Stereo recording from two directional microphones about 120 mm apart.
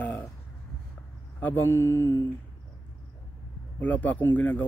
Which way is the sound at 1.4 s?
15° left (ahead or behind).